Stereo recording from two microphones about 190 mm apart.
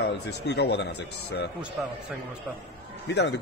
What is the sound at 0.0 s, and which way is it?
A man's voice, 60° left (ahead or behind).